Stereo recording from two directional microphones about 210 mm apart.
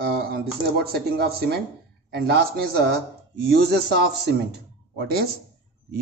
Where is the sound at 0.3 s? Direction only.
50° right (ahead or behind).